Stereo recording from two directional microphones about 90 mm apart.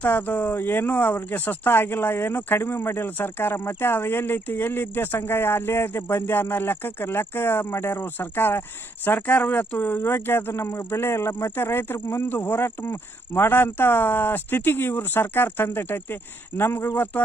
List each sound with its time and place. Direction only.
0.0 s speech: 20° left (ahead or behind)